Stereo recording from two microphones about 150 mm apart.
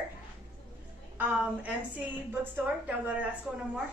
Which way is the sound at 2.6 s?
10° right (ahead or behind).